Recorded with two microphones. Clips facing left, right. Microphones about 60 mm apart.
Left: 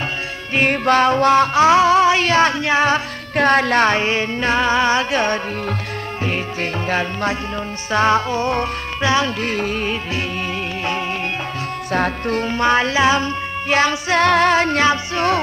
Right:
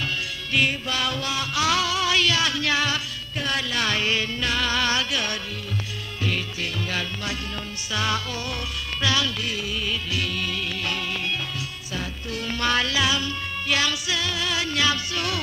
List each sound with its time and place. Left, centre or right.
0.6 s music: left
3.3 s music: left
9.4 s music: left
11.9 s music: left
12.4 s music: left
14.2 s music: left